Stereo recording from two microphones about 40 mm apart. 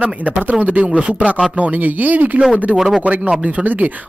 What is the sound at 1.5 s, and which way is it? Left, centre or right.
Speech, right.